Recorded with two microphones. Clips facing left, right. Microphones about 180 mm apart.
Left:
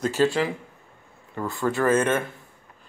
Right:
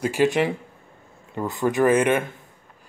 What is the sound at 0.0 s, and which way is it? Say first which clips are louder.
Speech: right 2 dB; 15° right (ahead or behind).